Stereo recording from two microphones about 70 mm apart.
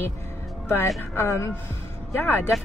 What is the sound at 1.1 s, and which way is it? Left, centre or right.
Speech, left.